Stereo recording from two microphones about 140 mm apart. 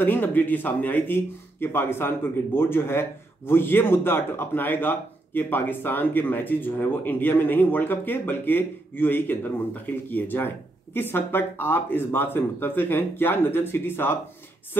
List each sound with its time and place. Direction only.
0.0 s speech: 15° left (ahead or behind)